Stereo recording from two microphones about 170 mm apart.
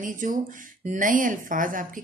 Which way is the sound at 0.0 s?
50° right (ahead or behind).